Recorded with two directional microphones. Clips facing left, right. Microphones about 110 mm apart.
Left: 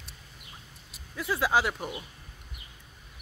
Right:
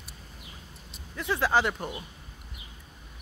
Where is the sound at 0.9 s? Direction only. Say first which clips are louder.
Right 1 dB; 5° left (ahead or behind).